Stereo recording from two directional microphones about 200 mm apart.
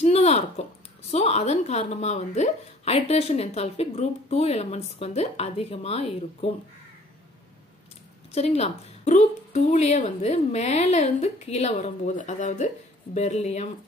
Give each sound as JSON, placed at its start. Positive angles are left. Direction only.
{"t": 0.0, "sound": "a sound", "side_deg": 30}
{"t": 1.1, "sound": "a woman's voice", "side_deg": 30}
{"t": 8.3, "sound": "a woman's voice", "side_deg": 30}